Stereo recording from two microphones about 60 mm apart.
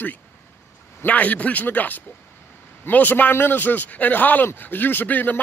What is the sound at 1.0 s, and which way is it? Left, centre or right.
A man's voice, left.